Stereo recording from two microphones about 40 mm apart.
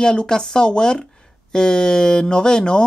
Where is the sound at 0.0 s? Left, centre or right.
Left.